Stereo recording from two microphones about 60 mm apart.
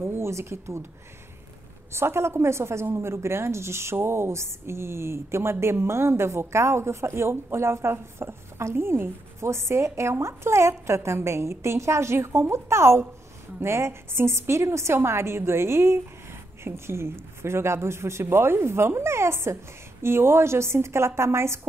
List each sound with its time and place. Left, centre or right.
0.0 s a woman's voice: right
1.9 s a woman's voice: right